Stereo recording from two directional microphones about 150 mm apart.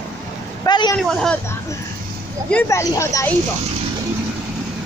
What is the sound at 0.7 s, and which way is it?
Vehicle, 30° left (ahead or behind).